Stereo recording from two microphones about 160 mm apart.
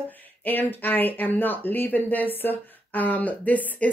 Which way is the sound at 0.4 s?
10° left (ahead or behind).